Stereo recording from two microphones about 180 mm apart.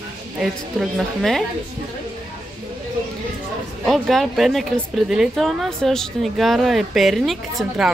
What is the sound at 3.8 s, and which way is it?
Speech, centre (ahead or behind).